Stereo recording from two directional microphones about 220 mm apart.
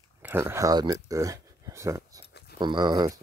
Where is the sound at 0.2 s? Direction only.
10° right (ahead or behind).